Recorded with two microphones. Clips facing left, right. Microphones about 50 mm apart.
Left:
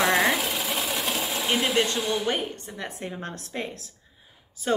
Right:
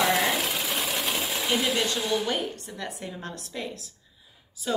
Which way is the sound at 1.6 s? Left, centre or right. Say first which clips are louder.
Left 2 dB; left.